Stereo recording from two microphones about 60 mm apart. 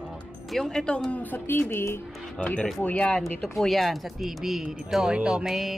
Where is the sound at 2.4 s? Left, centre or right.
Left.